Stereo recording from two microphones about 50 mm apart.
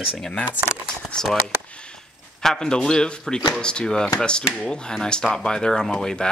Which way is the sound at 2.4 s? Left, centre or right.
Centre.